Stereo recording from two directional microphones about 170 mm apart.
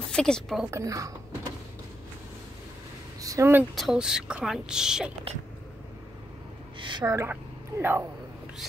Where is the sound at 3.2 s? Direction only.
20° right (ahead or behind).